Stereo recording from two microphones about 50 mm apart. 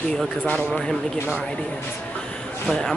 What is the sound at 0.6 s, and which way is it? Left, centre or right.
Speech, left.